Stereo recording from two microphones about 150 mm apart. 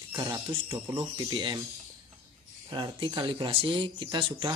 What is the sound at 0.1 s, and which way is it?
Speech, 20° right (ahead or behind).